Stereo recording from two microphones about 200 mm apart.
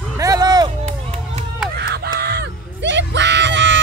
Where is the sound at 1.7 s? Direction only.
55° right (ahead or behind).